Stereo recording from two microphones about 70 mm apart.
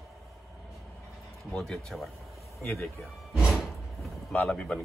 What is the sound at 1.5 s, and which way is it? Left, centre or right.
Speech, centre.